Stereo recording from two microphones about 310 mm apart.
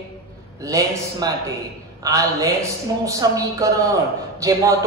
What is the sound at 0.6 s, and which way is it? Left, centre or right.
A man's voice, centre.